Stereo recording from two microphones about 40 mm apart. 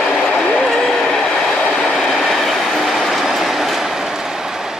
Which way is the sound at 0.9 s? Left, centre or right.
Centre.